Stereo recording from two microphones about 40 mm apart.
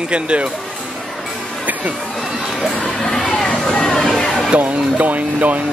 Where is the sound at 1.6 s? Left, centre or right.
Right.